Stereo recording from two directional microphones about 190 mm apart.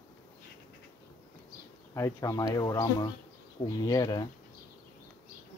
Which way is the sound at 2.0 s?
15° left (ahead or behind).